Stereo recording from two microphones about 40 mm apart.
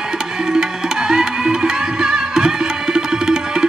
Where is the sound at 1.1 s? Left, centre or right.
Centre.